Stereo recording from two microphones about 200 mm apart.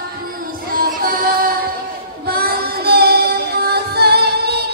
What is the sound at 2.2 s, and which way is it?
Child singing, 50° right (ahead or behind).